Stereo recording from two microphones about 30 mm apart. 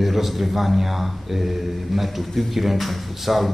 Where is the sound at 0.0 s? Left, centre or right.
Centre.